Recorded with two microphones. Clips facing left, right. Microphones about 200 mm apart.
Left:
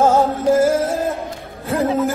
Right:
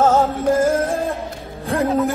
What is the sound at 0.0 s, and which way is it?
Music, 10° left (ahead or behind).